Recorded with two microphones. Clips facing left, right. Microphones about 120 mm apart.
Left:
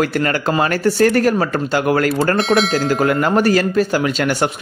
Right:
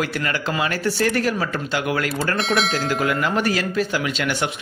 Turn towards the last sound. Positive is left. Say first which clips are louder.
# left 6 dB
turn(degrees=45)  # may be behind; listen again after turning